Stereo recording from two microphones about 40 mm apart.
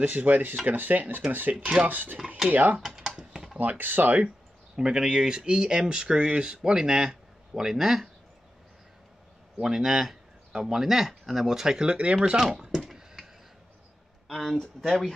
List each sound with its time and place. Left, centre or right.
0.0 s speech: right
3.0 s typing: centre
3.5 s speech: right
4.7 s speech: centre
9.6 s speech: centre
11.9 s speech: right
12.4 s a sound: centre
14.2 s a sound: centre
14.6 s speech: centre